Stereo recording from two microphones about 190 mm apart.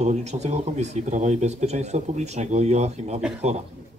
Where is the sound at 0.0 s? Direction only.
35° right (ahead or behind).